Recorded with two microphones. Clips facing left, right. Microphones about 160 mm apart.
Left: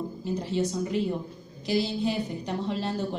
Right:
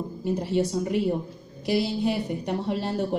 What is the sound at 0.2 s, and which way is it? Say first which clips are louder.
A woman's voice: right 4 dB; 65° right (ahead or behind).